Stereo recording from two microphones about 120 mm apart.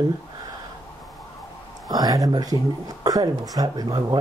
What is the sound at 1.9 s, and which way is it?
Speech, 30° right (ahead or behind).